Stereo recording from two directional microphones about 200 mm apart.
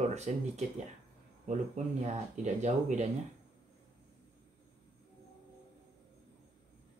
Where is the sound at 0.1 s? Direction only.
35° right (ahead or behind).